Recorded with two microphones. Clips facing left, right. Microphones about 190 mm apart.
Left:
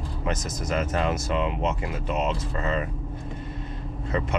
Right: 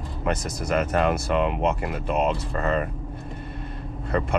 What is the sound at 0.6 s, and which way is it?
Speech, 60° right (ahead or behind).